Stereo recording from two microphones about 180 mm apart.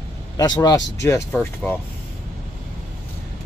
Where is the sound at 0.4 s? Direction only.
20° left (ahead or behind).